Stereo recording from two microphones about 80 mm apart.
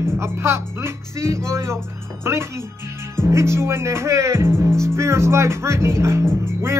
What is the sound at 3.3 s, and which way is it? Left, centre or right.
Speech, right.